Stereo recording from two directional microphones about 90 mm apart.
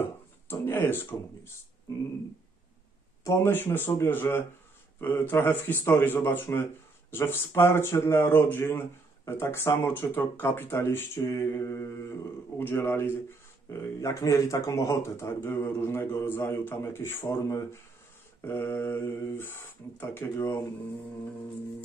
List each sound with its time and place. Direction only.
0.5 s speech: 25° left (ahead or behind)
3.3 s speech: 25° left (ahead or behind)